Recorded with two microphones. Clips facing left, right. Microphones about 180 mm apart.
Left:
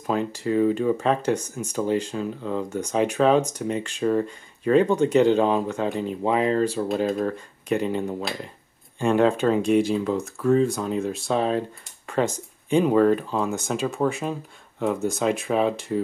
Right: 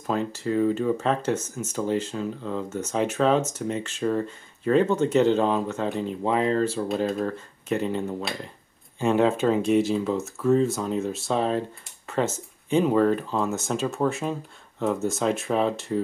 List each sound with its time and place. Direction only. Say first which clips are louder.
0.0 s speech: left 2 dB; 15° left (ahead or behind)
6.9 s speech: left 2 dB; centre (ahead or behind)
7.6 s speech: left 2 dB; 10° left (ahead or behind)
9.0 s speech: left 1 dB; 5° right (ahead or behind)
12.1 s a sound: left 2 dB; 15° left (ahead or behind)
12.8 s speech: left 3 dB; 5° left (ahead or behind)